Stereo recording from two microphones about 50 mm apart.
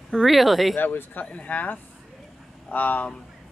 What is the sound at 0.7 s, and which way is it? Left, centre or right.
Speech, left.